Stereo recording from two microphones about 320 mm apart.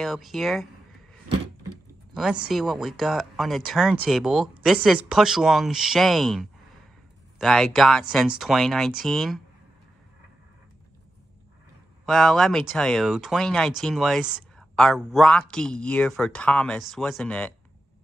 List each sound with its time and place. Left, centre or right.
0.0 s speech: centre
2.1 s speech: centre
12.1 s speech: centre